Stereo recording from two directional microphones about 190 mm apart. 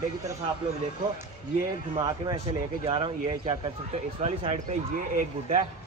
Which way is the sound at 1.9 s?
25° right (ahead or behind).